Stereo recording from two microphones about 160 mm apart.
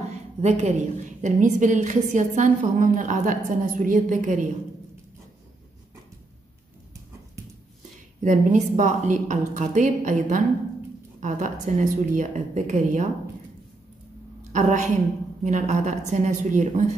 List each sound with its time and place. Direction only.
0.1 s a woman's voice: 45° right (ahead or behind)
8.2 s a woman's voice: 50° right (ahead or behind)
14.5 s a woman's voice: 50° right (ahead or behind)